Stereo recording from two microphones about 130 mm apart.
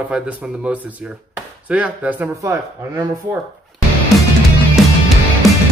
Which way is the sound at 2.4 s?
30° right (ahead or behind).